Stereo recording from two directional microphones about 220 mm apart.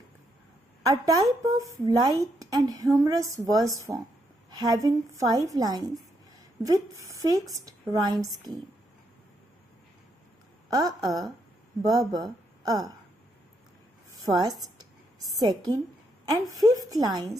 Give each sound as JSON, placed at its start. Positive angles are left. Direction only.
{"t": 0.8, "sound": "a woman's voice", "side_deg": -15}
{"t": 10.7, "sound": "a woman's voice", "side_deg": -15}
{"t": 14.2, "sound": "a woman's voice", "side_deg": -15}